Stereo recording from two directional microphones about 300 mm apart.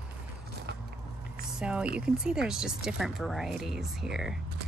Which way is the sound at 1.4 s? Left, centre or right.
Centre.